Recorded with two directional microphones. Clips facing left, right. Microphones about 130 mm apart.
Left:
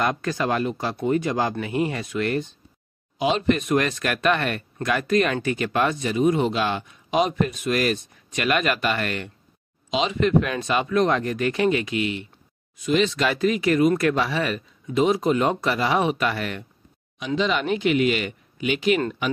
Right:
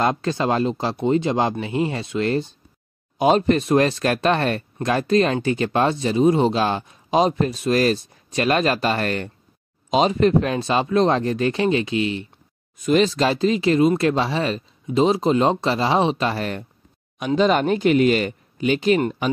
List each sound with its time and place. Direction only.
0.0 s speech: 25° right (ahead or behind)
3.2 s speech: 45° right (ahead or behind)
12.7 s speech: 45° right (ahead or behind)